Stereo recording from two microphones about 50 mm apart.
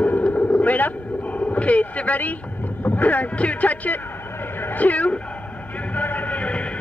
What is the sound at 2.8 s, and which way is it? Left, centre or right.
Speech, left.